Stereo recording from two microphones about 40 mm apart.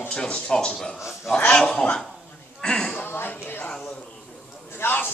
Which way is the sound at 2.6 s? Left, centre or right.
Centre.